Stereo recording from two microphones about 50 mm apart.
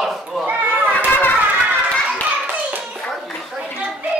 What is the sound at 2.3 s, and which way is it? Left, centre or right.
Hands, right.